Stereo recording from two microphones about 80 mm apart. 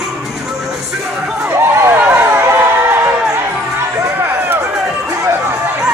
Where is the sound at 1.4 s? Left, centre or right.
Right.